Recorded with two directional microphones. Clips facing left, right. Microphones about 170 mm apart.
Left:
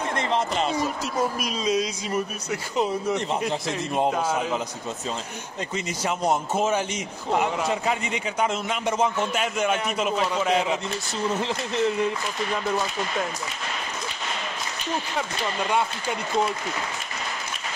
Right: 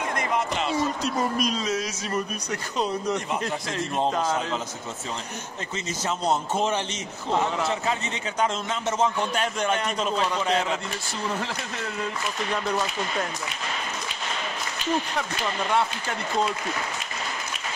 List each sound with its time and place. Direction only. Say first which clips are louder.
0.2 s a sound: left 3 dB; 30° left (ahead or behind)
1.0 s a man's voice: right 1 dB; 10° left (ahead or behind)
6.0 s a man's voice: left 1 dB; 10° left (ahead or behind)